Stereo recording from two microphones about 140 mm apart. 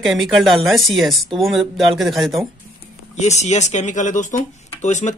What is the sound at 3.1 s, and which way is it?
Speech, 55° left (ahead or behind).